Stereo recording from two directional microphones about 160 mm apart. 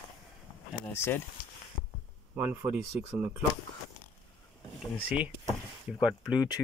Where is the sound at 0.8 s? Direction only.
15° left (ahead or behind).